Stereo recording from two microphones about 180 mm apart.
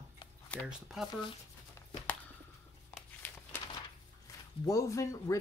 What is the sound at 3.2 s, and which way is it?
Crumpling, 10° left (ahead or behind).